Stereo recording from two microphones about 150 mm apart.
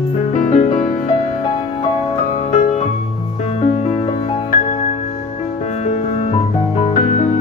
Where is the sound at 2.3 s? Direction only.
45° left (ahead or behind).